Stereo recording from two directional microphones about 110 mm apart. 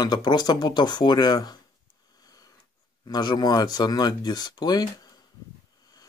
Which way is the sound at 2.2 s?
35° left (ahead or behind).